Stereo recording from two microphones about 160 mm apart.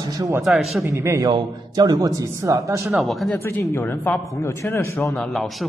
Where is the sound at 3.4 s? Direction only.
15° left (ahead or behind).